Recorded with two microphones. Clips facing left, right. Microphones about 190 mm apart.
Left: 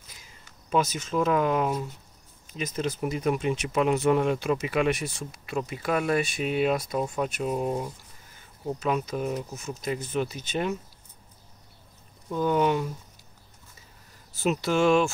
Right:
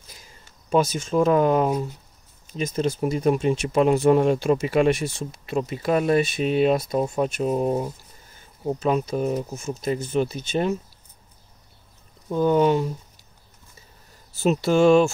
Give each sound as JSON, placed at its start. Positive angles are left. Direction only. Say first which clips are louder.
{"t": 0.5, "sound": "speech", "louder": "right 5 dB", "side_deg": -30}
{"t": 12.3, "sound": "speech", "louder": "right 5 dB", "side_deg": -35}
{"t": 14.4, "sound": "speech", "louder": "right 5 dB", "side_deg": -30}